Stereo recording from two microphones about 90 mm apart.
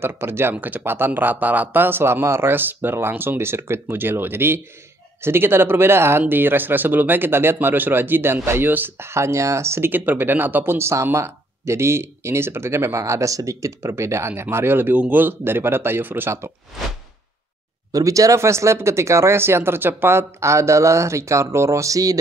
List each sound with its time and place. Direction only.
0.0 s speech: 25° right (ahead or behind)
17.9 s speech: 40° right (ahead or behind)